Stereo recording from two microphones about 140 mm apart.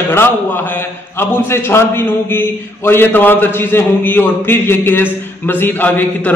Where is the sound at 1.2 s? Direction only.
15° left (ahead or behind).